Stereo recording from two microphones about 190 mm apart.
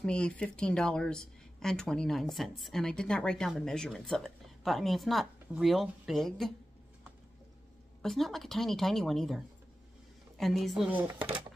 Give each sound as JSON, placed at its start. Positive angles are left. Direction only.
{"t": 0.0, "sound": "speech", "side_deg": 5}
{"t": 8.0, "sound": "speech", "side_deg": 0}
{"t": 11.1, "sound": "speech", "side_deg": -25}